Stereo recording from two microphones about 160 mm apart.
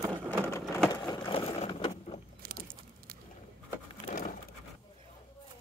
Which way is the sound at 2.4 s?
70° right (ahead or behind).